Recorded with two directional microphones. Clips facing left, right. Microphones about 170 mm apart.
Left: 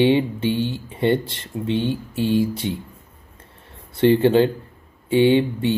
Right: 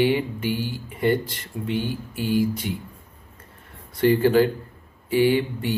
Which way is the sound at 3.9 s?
25° left (ahead or behind).